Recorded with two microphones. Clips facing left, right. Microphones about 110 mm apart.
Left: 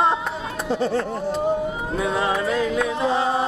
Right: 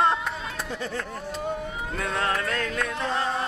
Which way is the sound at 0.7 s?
30° left (ahead or behind).